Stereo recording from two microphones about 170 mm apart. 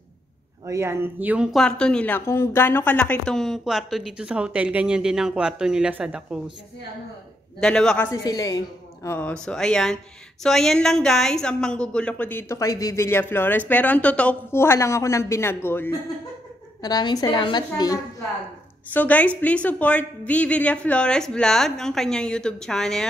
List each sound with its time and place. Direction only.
0.7 s speech: 15° right (ahead or behind)
7.6 s speech: 5° left (ahead or behind)
8.1 s a woman's voice: 20° left (ahead or behind)
18.9 s speech: 10° left (ahead or behind)